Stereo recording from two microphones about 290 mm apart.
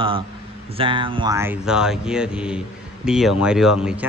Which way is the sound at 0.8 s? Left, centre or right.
Centre.